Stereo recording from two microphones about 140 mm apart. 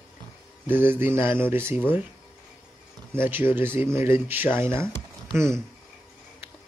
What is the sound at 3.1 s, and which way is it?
Speech, 15° right (ahead or behind).